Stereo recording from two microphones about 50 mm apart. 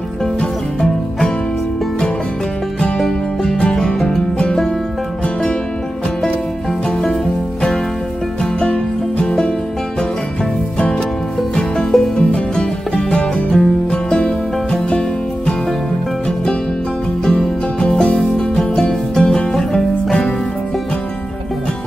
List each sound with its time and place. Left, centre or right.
0.4 s music: centre
3.0 s music: centre
8.4 s music: centre
11.5 s music: centre
17.2 s music: centre
18.8 s music: centre